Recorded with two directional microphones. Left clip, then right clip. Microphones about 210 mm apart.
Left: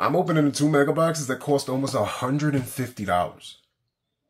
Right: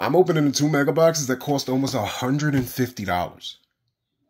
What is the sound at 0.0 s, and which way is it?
Speech, 20° right (ahead or behind).